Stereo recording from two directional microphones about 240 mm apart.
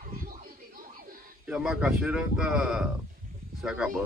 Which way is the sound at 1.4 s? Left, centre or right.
Centre.